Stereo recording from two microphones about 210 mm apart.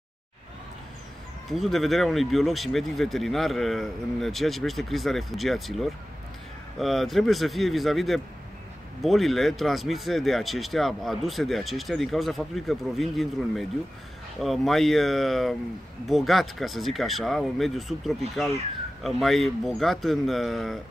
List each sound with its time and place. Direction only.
1.5 s speech: centre (ahead or behind)